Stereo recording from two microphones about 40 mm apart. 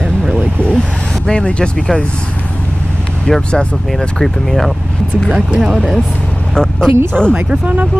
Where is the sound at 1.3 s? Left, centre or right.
Left.